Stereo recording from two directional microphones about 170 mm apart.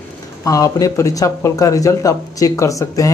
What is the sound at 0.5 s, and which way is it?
Speech, 20° left (ahead or behind).